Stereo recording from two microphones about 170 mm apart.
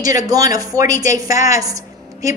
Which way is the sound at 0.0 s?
20° right (ahead or behind).